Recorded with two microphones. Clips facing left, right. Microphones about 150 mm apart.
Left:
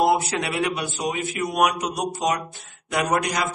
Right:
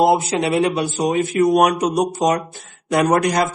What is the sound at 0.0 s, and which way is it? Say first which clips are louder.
Speech: right 5 dB; 25° right (ahead or behind).